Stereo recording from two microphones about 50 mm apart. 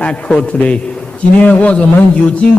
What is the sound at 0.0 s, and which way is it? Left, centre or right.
Speech, left.